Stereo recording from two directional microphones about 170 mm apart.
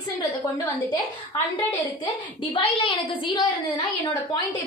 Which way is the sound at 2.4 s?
30° left (ahead or behind).